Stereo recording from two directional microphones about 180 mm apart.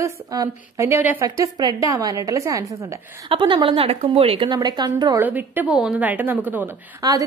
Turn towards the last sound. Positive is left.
turn(degrees=-15)  # may be behind; listen again after turning